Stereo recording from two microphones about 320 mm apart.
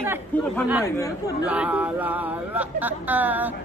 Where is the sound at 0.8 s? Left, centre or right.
Centre.